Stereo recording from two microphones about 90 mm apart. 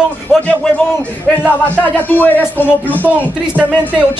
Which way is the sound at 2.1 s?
20° left (ahead or behind).